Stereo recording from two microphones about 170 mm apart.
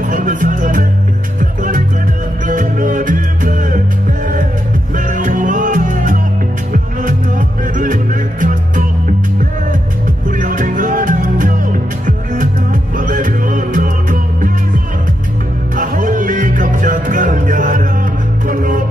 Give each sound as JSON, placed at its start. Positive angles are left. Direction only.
{"t": 0.0, "sound": "speech", "side_deg": -50}
{"t": 1.4, "sound": "music", "side_deg": -50}
{"t": 4.9, "sound": "music", "side_deg": -50}
{"t": 10.3, "sound": "music", "side_deg": -50}
{"t": 12.9, "sound": "music", "side_deg": -50}
{"t": 15.7, "sound": "music", "side_deg": -50}